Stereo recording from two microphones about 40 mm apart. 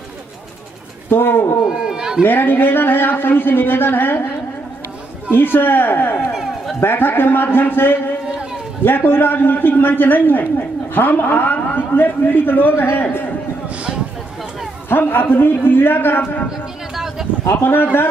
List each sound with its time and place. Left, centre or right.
1.1 s speech: left
1.7 s speech: centre
2.2 s speech: left
5.3 s speech: left
6.3 s run: centre
6.8 s speech: left
14.9 s speech: left
16.9 s a sound: centre
17.5 s speech: left